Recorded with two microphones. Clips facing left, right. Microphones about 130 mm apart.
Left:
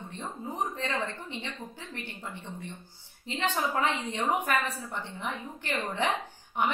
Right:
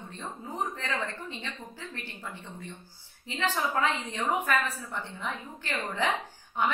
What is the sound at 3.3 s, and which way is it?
A woman's voice, 15° left (ahead or behind).